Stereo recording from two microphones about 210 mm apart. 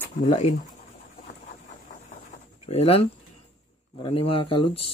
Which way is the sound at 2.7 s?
30° left (ahead or behind).